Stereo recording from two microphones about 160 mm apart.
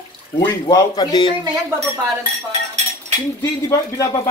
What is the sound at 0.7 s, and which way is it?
Speech, 25° left (ahead or behind).